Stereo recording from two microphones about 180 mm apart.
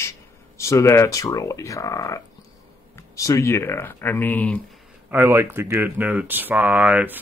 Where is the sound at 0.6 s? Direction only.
15° left (ahead or behind).